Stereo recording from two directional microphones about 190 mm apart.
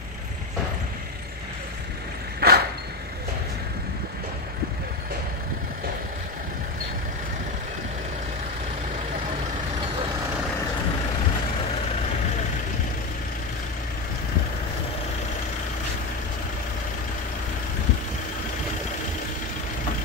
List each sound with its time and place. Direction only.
2.4 s vehicle: 55° right (ahead or behind)